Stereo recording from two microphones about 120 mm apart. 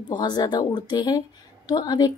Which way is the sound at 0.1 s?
35° left (ahead or behind).